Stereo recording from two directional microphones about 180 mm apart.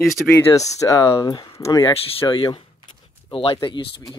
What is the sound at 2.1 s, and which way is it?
Speech, 30° left (ahead or behind).